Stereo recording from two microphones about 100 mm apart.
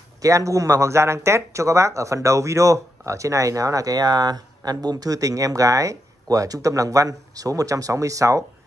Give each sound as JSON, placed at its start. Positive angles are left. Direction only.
{"t": 0.2, "sound": "speech", "side_deg": -30}